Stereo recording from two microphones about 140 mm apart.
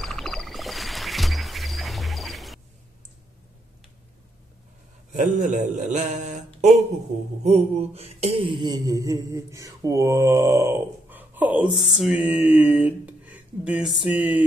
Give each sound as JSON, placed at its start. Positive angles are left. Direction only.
{"t": 0.0, "sound": "music", "side_deg": 0}
{"t": 5.1, "sound": "speech", "side_deg": -65}
{"t": 7.4, "sound": "mantra", "side_deg": -50}